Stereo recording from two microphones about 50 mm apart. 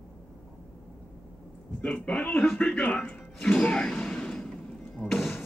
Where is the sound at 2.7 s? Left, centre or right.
Left.